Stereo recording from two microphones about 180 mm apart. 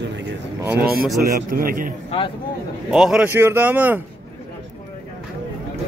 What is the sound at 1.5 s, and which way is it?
Speech, 50° right (ahead or behind).